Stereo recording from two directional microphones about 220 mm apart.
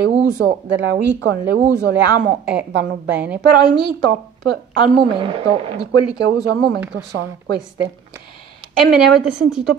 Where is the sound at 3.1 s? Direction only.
5° right (ahead or behind).